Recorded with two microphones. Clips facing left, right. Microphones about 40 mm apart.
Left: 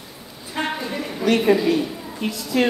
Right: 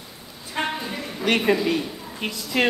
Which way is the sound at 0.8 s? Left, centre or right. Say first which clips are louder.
Left 4 dB; centre.